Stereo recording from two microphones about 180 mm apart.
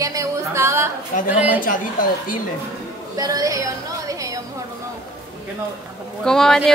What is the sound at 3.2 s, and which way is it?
Speech, 20° right (ahead or behind).